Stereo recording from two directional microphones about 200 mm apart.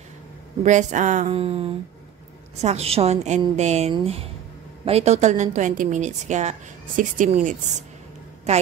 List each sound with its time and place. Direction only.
0.7 s a woman's voice: 35° right (ahead or behind)